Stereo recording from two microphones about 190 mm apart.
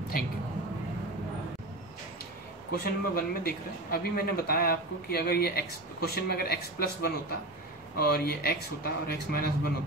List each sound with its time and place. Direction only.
0.1 s speech: 50° left (ahead or behind)
2.7 s speech: 50° left (ahead or behind)